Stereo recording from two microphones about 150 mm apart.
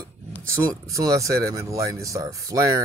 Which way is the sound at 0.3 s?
20° right (ahead or behind).